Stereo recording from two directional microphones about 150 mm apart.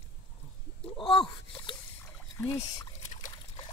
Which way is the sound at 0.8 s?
40° left (ahead or behind).